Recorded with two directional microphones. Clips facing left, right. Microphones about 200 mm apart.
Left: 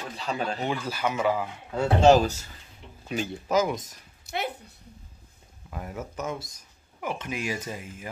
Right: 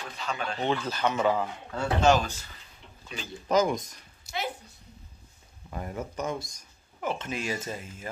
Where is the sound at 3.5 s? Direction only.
5° left (ahead or behind).